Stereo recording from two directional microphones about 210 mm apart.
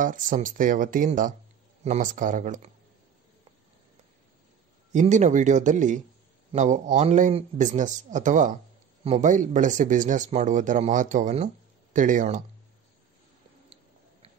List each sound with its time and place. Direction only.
0.0 s speech: 40° right (ahead or behind)
4.9 s speech: 35° right (ahead or behind)